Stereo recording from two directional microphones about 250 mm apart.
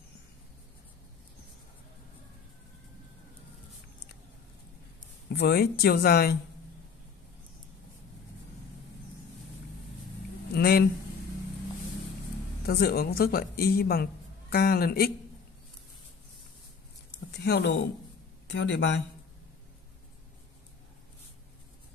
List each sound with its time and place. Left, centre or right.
5.3 s a woman's voice: left
10.5 s a sound: left
12.6 s a woman's voice: left
17.3 s a woman's voice: left